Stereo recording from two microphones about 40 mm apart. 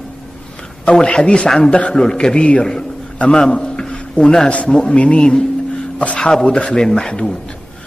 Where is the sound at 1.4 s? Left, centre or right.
Centre.